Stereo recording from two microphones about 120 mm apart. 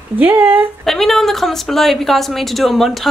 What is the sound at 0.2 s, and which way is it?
Speech, 15° right (ahead or behind).